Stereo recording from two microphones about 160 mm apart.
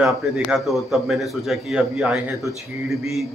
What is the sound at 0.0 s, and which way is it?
A man's voice, centre (ahead or behind).